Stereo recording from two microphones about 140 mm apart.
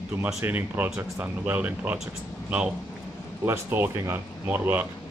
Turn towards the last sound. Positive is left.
turn(degrees=-15)  # may be behind; listen again after turning